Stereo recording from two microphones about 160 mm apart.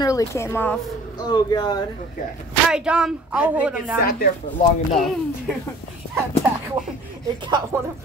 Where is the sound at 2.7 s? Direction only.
5° right (ahead or behind).